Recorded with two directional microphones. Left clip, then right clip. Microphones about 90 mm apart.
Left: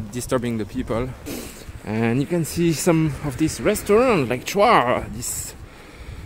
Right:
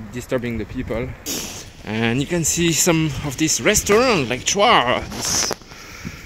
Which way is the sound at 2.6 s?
20° left (ahead or behind).